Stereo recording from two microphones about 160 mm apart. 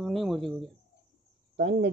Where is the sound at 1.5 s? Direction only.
85° right.